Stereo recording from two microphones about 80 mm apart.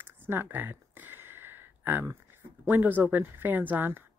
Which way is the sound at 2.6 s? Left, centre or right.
Right.